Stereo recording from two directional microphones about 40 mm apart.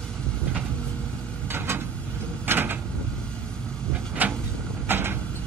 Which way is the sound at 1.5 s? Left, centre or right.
Right.